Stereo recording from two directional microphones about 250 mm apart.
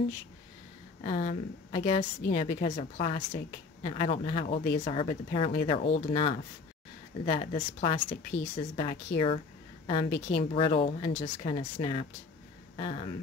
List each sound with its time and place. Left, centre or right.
1.0 s a woman's voice: left